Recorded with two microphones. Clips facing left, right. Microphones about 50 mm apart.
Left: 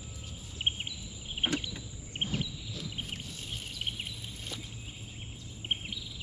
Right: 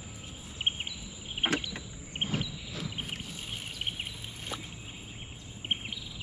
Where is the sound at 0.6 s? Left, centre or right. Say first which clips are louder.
Right 1 dB; right.